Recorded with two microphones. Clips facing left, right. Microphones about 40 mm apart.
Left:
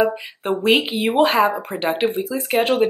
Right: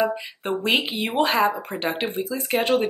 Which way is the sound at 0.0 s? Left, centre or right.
Centre.